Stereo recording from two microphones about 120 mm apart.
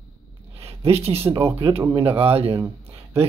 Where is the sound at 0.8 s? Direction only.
55° right (ahead or behind).